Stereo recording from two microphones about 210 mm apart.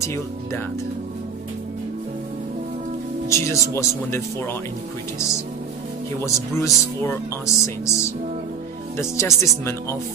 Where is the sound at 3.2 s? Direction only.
15° left (ahead or behind).